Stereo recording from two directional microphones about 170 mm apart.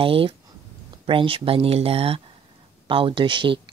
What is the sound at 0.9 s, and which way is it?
Speech, 30° right (ahead or behind).